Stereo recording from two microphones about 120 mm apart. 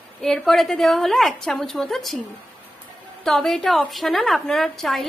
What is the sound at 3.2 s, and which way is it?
A woman's voice, 5° left (ahead or behind).